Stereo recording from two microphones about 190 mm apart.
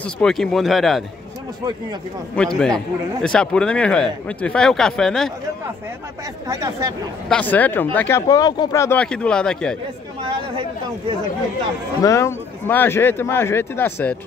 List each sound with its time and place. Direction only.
0.0 s speech: 5° left (ahead or behind)
2.3 s speech: 5° left (ahead or behind)
6.4 s speech: 20° right (ahead or behind)
7.2 s speech: 5° left (ahead or behind)
8.3 s speech: 20° left (ahead or behind); by 9.8 s 5° left (ahead or behind)
12.0 s speech: 15° left (ahead or behind)